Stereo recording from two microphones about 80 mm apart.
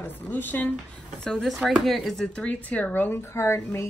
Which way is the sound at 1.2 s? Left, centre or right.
Centre.